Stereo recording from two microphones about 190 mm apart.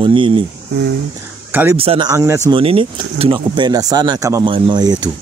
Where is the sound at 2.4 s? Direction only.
30° right (ahead or behind).